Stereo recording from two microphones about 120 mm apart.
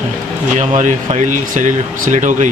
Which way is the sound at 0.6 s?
85° right.